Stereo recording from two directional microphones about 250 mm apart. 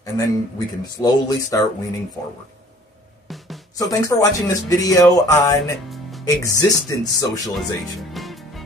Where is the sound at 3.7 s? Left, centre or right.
Centre.